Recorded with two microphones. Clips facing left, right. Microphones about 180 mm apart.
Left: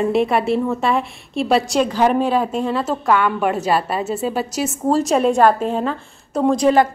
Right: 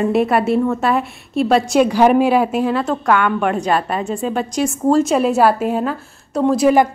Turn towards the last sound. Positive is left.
turn(degrees=-10)  # may be behind; listen again after turning